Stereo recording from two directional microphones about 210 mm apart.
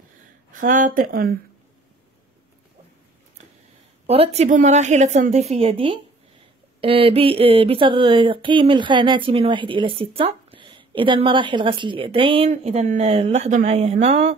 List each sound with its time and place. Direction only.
0.5 s a woman's voice: 40° right (ahead or behind)
4.1 s a woman's voice: 30° right (ahead or behind)